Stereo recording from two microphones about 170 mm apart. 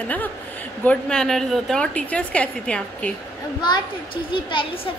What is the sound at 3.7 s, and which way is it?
A woman's voice, 25° left (ahead or behind).